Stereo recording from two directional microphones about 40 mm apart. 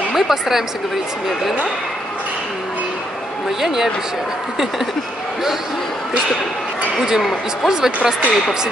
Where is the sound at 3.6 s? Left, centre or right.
Centre.